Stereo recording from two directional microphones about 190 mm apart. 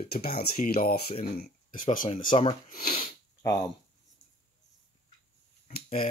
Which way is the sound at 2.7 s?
50° left (ahead or behind).